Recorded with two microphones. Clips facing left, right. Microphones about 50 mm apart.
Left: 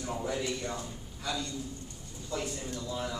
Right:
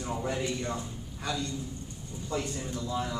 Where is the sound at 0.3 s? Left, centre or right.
Right.